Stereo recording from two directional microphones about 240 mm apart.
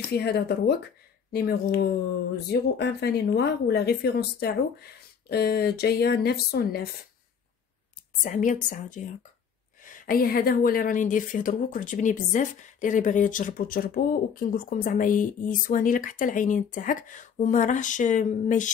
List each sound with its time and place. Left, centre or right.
0.1 s a woman's voice: left
8.2 s a woman's voice: left